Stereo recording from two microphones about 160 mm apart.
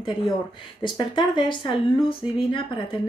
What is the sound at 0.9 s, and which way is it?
Speech, 30° left (ahead or behind).